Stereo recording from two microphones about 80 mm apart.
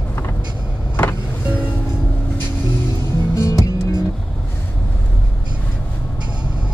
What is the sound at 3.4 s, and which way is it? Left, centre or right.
Music, left.